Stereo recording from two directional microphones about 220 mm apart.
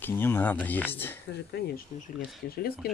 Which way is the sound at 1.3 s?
45° left (ahead or behind).